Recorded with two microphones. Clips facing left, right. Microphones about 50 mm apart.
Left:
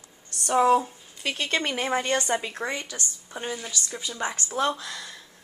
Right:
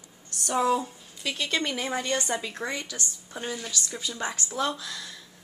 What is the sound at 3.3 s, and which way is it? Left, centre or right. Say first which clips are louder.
A woman's voice: left 1 dB; centre.